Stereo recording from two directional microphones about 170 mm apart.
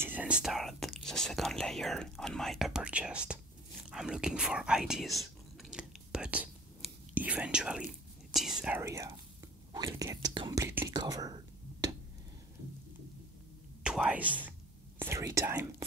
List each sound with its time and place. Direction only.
0.0 s speech: 10° right (ahead or behind)
3.9 s whispering: 5° right (ahead or behind)
8.8 s speech: 20° right (ahead or behind)
10.6 s speech: 10° right (ahead or behind)
10.9 s speech: 25° right (ahead or behind)
13.8 s speech: 5° right (ahead or behind)